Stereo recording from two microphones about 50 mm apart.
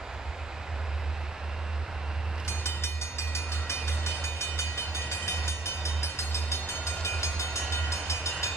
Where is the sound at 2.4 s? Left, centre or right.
Left.